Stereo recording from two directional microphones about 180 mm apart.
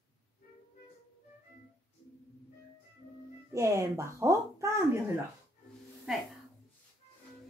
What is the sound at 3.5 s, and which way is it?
Speech, 15° right (ahead or behind).